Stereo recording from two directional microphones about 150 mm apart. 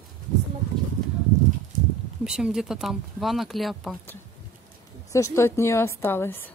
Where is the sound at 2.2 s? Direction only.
5° right (ahead or behind).